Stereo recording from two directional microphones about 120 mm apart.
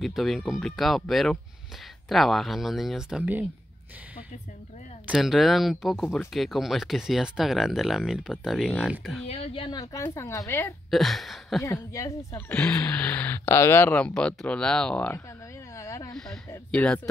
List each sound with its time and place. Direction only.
0.0 s speech: centre (ahead or behind)
5.0 s speech: 5° right (ahead or behind)
9.2 s a woman's voice: 55° left (ahead or behind)
9.7 s a woman's voice: 30° left (ahead or behind)
10.9 s speech: centre (ahead or behind)
11.6 s speech: 25° left (ahead or behind); by 15.2 s 10° left (ahead or behind)
15.7 s a sound: 25° left (ahead or behind)
16.2 s speech: 5° left (ahead or behind)